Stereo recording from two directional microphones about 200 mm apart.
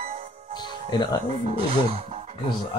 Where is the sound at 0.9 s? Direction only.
20° left (ahead or behind).